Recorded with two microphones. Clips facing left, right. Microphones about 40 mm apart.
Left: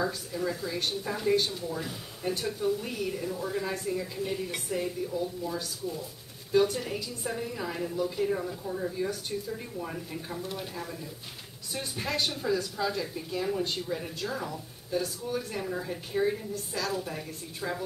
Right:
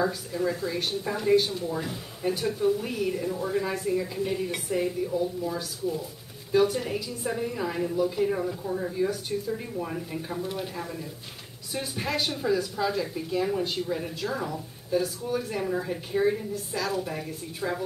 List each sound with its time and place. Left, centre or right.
0.0 s a woman's voice: centre